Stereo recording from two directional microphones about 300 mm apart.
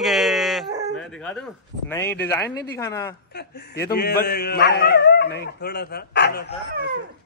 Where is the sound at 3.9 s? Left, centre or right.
Left.